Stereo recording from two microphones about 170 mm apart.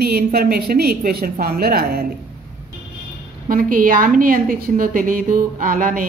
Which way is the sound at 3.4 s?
55° right (ahead or behind).